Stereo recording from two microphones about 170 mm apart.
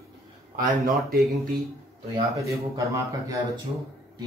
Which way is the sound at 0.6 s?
60° right (ahead or behind).